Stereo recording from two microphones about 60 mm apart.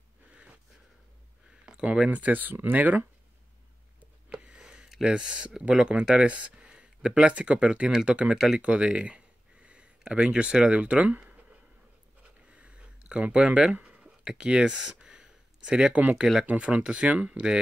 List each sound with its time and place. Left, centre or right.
0.3 s wheeze: centre
1.5 s speech: centre
4.0 s a sound: centre
5.1 s speech: centre
12.2 s a sound: right
14.2 s speech: centre